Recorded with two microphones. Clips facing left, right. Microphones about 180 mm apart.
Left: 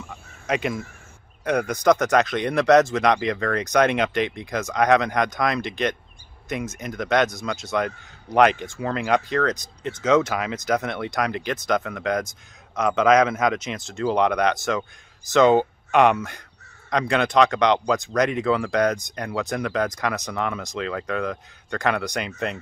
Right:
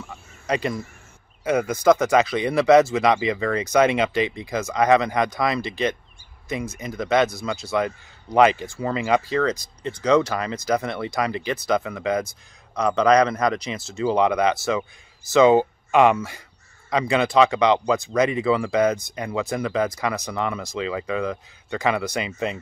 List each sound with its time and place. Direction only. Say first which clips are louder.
0.5 s speech: even; centre (ahead or behind)